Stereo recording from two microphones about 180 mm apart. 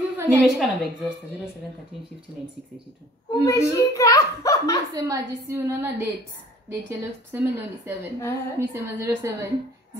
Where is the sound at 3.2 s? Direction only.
20° left (ahead or behind).